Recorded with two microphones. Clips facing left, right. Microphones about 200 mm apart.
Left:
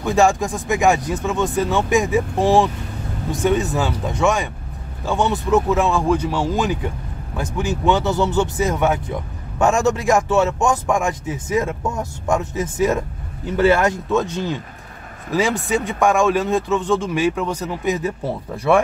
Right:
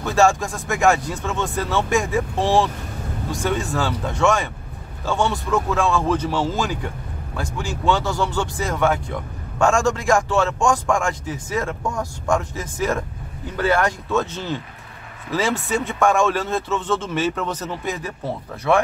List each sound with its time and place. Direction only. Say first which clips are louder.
0.0 s a man's voice: left 1 dB; 15° left (ahead or behind)
15.7 s speech: even; 15° left (ahead or behind)